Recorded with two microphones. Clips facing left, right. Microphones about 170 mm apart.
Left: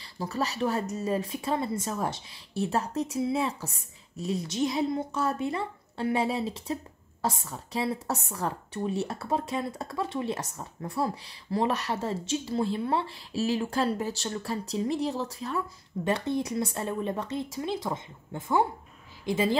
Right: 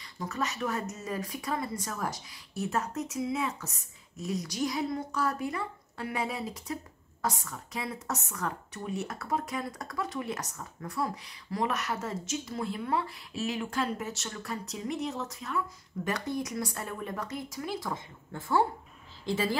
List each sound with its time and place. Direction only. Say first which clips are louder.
0.0 s speech: left 3 dB; 30° left (ahead or behind)